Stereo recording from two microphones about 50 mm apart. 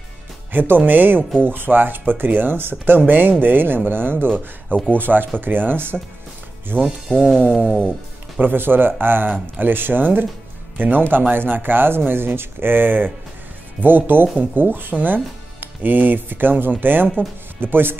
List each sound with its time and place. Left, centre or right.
0.5 s speech: right
7.1 s speech: centre
8.4 s speech: right